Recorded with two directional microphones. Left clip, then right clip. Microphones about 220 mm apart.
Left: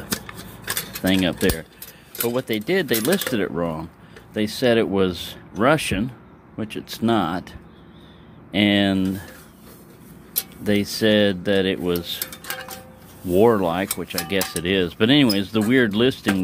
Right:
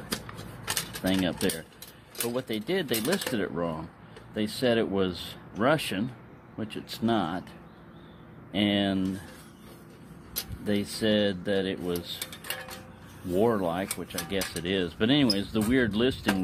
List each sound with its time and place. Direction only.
1.0 s speech: 20° left (ahead or behind)
8.5 s speech: 20° left (ahead or behind)
10.6 s speech: 25° left (ahead or behind)
13.3 s speech: 25° left (ahead or behind)